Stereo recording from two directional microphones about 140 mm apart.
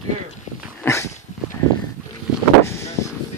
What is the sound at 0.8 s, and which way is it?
Dog, 20° left (ahead or behind).